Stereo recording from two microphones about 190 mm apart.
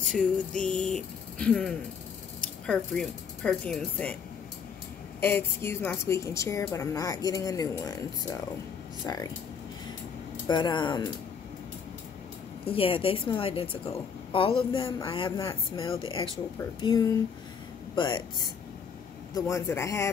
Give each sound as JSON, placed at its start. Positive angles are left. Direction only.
{"t": 0.1, "sound": "speech", "side_deg": 5}
{"t": 5.2, "sound": "a woman's voice", "side_deg": 10}
{"t": 10.5, "sound": "a woman's voice", "side_deg": 25}
{"t": 12.6, "sound": "a woman's voice", "side_deg": 30}